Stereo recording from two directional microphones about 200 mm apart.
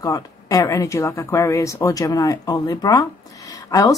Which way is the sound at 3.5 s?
15° left (ahead or behind).